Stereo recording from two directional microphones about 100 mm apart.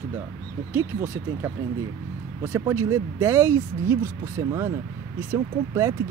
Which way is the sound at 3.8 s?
25° right (ahead or behind).